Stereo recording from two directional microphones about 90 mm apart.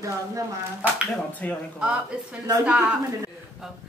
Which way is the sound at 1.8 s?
10° right (ahead or behind).